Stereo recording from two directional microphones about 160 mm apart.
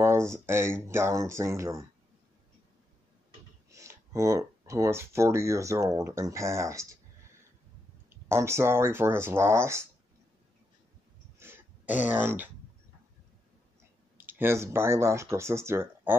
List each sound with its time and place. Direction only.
0.0 s speech: 15° right (ahead or behind)
3.7 s speech: 20° right (ahead or behind)
8.3 s speech: 15° right (ahead or behind)
11.3 s a sound: 15° right (ahead or behind)
14.1 s speech: 15° right (ahead or behind)